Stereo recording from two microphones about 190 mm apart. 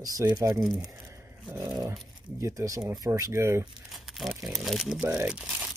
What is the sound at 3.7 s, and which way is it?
Crumpling, centre (ahead or behind).